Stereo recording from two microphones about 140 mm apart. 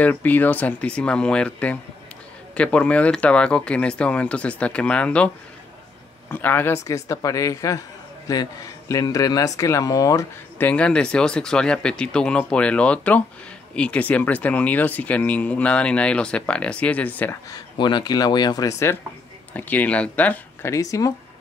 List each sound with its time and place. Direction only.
0.0 s speech: 10° left (ahead or behind)
6.3 s speech: 15° left (ahead or behind)
10.6 s speech: 10° left (ahead or behind)
17.5 s speech: 30° left (ahead or behind); by 20.7 s 10° left (ahead or behind)
20.7 s speech: 25° left (ahead or behind)